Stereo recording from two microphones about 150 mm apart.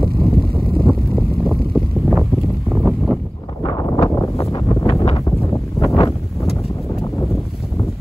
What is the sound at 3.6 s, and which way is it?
Wind noise, 25° left (ahead or behind).